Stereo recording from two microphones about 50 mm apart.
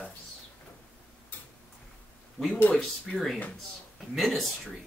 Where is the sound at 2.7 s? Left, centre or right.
Centre.